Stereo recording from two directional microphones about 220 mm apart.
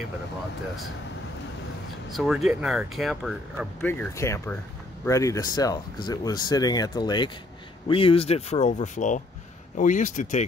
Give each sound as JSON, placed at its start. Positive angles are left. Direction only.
{"t": 2.1, "sound": "speech", "side_deg": 0}